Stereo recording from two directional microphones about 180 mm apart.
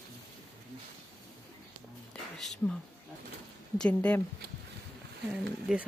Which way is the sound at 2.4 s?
Centre (ahead or behind).